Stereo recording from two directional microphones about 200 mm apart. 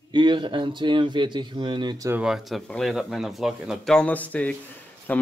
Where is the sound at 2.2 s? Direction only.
Centre (ahead or behind).